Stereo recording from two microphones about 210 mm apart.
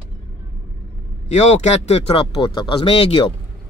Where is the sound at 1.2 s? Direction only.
30° left (ahead or behind).